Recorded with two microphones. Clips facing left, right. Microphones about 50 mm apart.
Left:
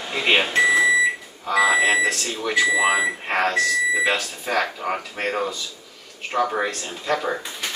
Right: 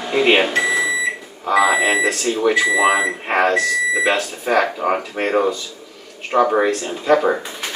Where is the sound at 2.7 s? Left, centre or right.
Centre.